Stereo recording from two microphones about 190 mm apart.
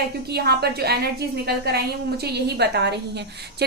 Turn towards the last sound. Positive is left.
turn(degrees=-60)  # may be behind; listen again after turning